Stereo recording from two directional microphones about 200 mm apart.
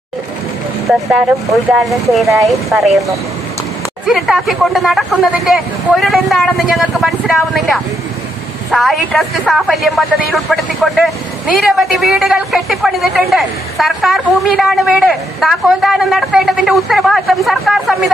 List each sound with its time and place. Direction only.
0.8 s a woman's voice: centre (ahead or behind)
4.1 s a woman's voice: centre (ahead or behind)